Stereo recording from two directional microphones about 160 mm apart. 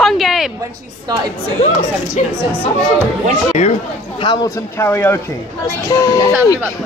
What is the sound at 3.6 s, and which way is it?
Speech, 45° left (ahead or behind).